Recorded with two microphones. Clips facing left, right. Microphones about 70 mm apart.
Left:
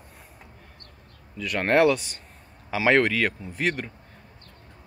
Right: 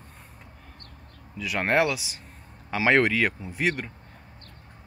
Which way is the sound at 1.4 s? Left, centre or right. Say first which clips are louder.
Left 3 dB; centre.